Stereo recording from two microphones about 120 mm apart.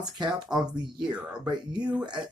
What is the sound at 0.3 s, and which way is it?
Speech, 5° right (ahead or behind).